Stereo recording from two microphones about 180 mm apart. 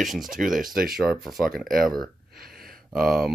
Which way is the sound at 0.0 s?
Centre (ahead or behind).